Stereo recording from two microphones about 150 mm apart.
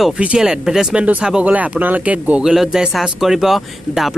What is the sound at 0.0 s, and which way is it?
Speech, 5° right (ahead or behind).